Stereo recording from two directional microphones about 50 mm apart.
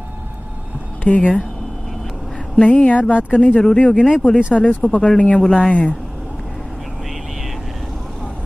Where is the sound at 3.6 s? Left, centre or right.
Centre.